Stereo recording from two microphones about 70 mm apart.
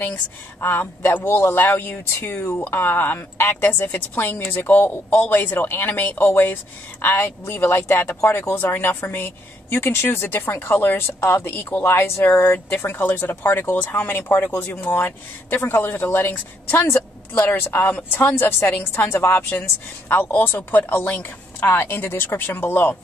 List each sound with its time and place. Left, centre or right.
0.0 s a woman's voice: left
20.2 s a woman's voice: left